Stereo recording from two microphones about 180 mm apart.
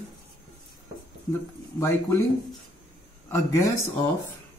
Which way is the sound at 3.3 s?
15° left (ahead or behind).